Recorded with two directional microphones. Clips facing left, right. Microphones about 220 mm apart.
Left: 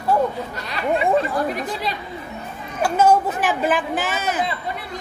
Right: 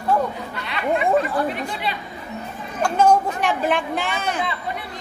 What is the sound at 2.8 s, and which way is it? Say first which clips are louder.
Speech: left 1 dB; 5° left (ahead or behind).